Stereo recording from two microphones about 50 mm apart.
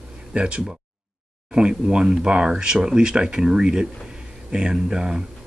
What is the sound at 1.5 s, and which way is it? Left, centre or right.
Speech, centre.